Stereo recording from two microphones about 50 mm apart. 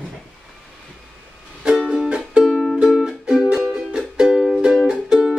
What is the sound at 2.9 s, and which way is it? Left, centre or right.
Music, centre.